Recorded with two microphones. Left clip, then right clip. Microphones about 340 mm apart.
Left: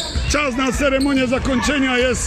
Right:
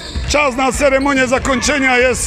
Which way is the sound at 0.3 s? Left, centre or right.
Centre.